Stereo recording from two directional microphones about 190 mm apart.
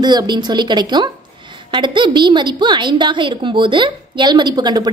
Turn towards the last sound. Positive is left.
turn(degrees=-20)  # may be behind; listen again after turning